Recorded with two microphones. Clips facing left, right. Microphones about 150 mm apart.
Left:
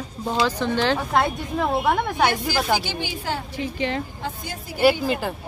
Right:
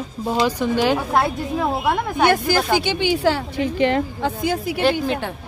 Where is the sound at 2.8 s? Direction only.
70° right (ahead or behind).